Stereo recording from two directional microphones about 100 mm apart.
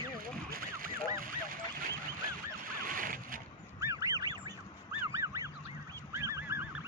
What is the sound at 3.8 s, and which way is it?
Goose, 30° right (ahead or behind).